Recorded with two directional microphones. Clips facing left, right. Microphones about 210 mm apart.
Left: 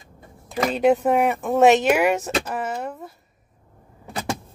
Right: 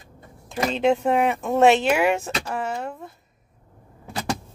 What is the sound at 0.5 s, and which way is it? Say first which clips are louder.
A woman's voice: left 2 dB; 5° left (ahead or behind).